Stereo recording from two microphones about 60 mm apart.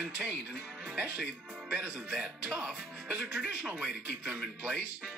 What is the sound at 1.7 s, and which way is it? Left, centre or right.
Speech, centre.